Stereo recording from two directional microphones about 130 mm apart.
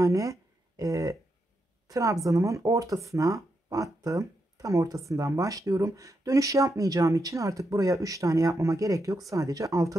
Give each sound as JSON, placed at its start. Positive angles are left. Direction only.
{"t": 0.0, "sound": "a woman's voice", "side_deg": -25}